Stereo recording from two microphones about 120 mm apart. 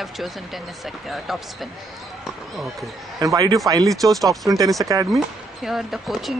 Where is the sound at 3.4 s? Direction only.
30° right (ahead or behind).